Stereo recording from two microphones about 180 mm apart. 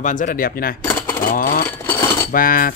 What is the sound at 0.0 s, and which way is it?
Speech, 45° left (ahead or behind).